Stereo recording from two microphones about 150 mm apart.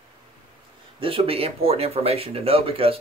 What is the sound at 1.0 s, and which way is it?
Speech, 40° right (ahead or behind).